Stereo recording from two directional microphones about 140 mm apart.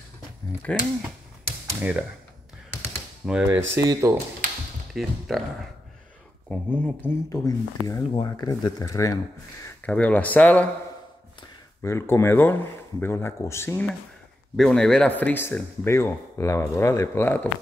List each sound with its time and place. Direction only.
0.7 s speech: 5° left (ahead or behind)
1.8 s speech: 10° right (ahead or behind)
2.7 s tap: 20° left (ahead or behind)
3.3 s speech: 5° right (ahead or behind)
3.5 s speech: 20° right (ahead or behind)
4.9 s speech: centre (ahead or behind)
6.5 s speech: 10° left (ahead or behind)
7.4 s speech: 30° left (ahead or behind)
9.8 s speech: 10° left (ahead or behind)
11.8 s speech: 20° left (ahead or behind)
14.6 s speech: 5° left (ahead or behind)